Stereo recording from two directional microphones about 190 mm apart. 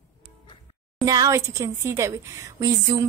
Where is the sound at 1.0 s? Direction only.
20° right (ahead or behind).